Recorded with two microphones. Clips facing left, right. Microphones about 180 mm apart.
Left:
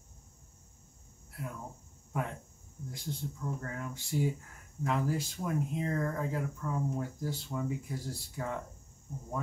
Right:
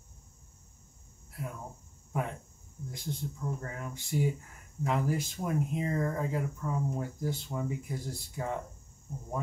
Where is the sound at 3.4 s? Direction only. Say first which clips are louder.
Even; 20° right (ahead or behind).